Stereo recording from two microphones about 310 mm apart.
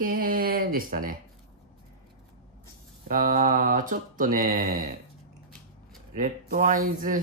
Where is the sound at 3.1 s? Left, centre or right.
Right.